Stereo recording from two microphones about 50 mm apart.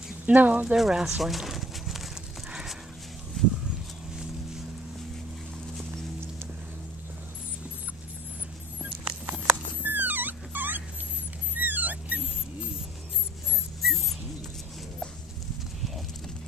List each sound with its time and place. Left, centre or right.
0.3 s speech: right
0.7 s speech: centre
3.4 s a sound: centre
9.8 s dog: right
13.8 s dog: centre